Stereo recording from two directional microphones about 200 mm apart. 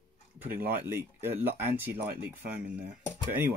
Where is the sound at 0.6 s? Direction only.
10° right (ahead or behind).